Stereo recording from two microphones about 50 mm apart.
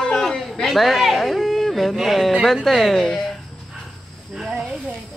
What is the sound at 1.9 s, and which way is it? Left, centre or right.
Speech, centre.